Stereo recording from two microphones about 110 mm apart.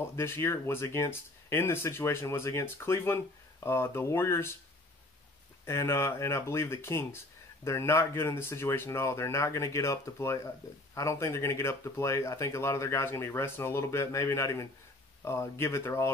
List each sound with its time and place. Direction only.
0.1 s speech: 25° left (ahead or behind)
5.7 s speech: 25° left (ahead or behind)